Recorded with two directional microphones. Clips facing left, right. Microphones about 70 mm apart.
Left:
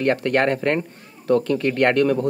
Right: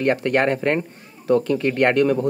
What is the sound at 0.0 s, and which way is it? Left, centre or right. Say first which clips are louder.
Speech: even; centre.